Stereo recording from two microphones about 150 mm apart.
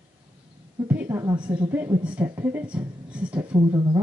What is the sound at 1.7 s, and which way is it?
Speech, 15° right (ahead or behind).